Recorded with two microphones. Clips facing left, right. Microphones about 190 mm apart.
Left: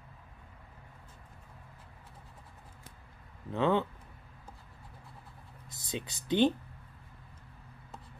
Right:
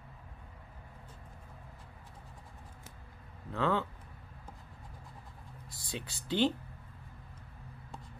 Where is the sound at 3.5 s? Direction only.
20° left (ahead or behind).